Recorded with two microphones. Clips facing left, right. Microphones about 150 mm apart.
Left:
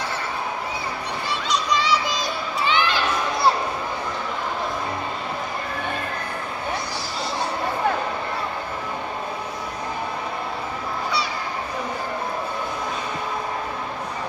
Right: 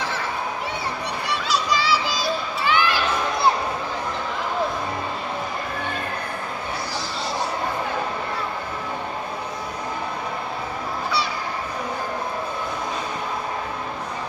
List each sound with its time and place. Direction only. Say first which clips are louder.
1.5 s music: even; 5° right (ahead or behind)
2.6 s children playing: even; 20° left (ahead or behind)